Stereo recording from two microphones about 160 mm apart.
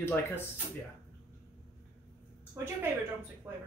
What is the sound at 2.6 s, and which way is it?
Speech, 15° right (ahead or behind).